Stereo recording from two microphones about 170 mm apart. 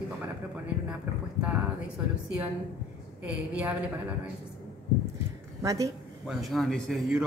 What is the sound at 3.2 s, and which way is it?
Speech, 10° right (ahead or behind).